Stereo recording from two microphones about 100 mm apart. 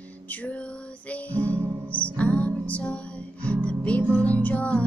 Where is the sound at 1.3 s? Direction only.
15° left (ahead or behind).